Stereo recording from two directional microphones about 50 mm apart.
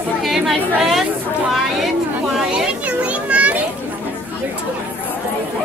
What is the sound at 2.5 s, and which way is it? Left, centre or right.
Children playing, right.